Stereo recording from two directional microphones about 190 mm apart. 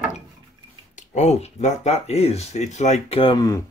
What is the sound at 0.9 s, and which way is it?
Speech, 40° left (ahead or behind).